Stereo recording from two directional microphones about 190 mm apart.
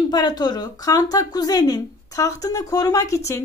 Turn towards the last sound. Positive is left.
turn(degrees=15)  # may be behind; listen again after turning